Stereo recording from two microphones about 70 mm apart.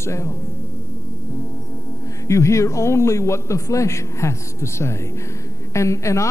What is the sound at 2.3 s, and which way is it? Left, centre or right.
A woman's voice, left.